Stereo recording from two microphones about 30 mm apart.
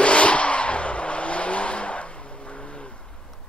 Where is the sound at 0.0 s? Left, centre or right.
Left.